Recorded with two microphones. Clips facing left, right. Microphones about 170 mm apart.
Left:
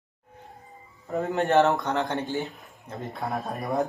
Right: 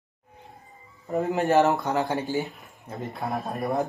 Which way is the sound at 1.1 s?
Centre (ahead or behind).